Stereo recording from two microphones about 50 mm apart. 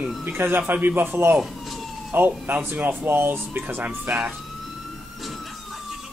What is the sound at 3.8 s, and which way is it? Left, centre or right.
Speech, right.